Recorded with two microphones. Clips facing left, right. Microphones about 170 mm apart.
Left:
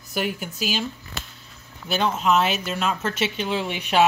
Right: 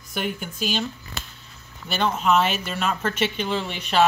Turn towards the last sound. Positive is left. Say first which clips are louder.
# left 1 dB
turn(degrees=10)  # may be behind; listen again after turning